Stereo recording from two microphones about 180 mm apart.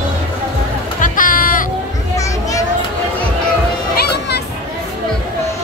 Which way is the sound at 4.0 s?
65° left (ahead or behind).